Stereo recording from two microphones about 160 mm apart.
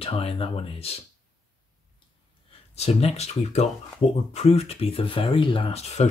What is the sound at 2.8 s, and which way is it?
Speech, 40° left (ahead or behind).